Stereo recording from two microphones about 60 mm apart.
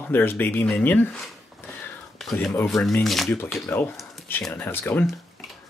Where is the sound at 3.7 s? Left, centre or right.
Left.